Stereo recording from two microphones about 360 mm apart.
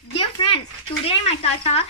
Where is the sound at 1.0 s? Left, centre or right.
Centre.